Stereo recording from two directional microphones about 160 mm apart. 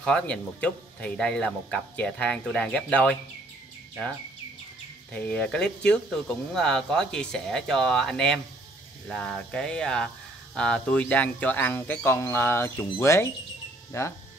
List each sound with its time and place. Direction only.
0.0 s speech: 5° left (ahead or behind)
5.1 s speech: 5° left (ahead or behind)